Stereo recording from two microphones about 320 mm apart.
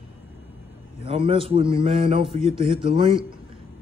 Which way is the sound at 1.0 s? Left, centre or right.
Centre.